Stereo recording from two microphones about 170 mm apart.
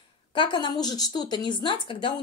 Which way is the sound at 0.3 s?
30° left (ahead or behind).